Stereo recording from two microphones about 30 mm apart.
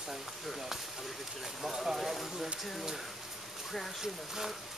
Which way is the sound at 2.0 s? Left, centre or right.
Centre.